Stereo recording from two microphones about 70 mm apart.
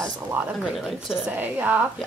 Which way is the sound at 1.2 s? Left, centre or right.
Right.